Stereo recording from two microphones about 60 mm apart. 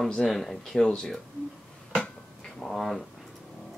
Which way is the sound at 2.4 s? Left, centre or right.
Centre.